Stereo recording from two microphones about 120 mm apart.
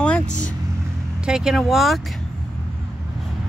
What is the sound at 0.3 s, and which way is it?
Speech, 90° left.